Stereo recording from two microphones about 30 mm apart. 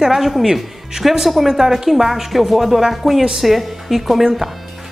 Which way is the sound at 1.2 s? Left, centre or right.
Centre.